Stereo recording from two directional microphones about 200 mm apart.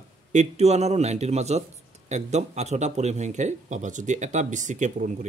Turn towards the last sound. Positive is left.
turn(degrees=-40)  # may be behind; listen again after turning